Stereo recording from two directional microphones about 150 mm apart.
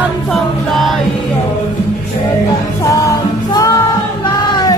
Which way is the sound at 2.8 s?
20° left (ahead or behind).